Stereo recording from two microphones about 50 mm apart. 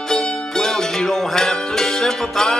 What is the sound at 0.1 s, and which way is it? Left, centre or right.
Music, centre.